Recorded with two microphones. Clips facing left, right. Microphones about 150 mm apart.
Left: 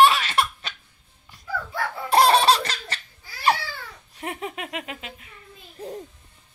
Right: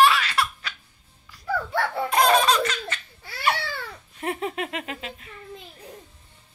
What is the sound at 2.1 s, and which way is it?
Laughter, 30° left (ahead or behind).